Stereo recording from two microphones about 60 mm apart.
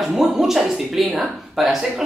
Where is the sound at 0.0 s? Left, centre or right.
Centre.